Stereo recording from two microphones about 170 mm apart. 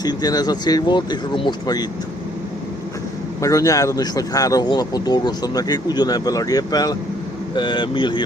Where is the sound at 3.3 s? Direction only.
20° left (ahead or behind).